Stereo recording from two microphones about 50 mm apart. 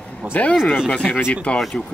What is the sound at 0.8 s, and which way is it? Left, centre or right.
Speech, left.